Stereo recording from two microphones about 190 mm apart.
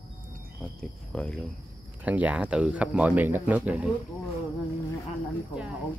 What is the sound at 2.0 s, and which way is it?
Speech, 10° right (ahead or behind).